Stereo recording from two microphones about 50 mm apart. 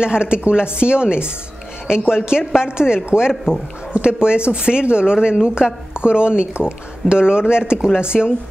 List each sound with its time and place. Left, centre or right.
0.0 s speech: centre